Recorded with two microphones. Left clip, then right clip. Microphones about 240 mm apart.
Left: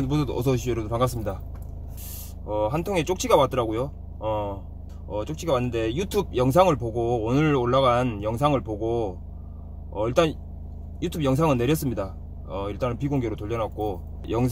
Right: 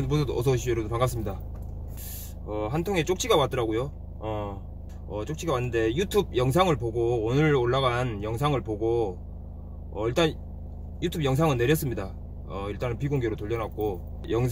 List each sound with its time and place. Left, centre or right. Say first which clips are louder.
0.0 s speech: left 1 dB; centre
2.4 s speech: left 4 dB; centre